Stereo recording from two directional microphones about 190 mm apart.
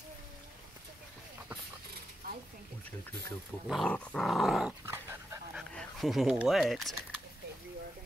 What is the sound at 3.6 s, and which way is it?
Dog, centre (ahead or behind).